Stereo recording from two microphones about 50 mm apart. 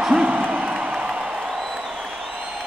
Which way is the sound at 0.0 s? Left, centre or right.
Centre.